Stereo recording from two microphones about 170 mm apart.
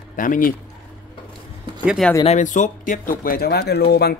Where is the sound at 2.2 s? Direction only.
45° left (ahead or behind).